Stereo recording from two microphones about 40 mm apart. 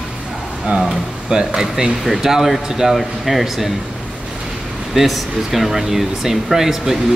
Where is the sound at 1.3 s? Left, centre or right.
Centre.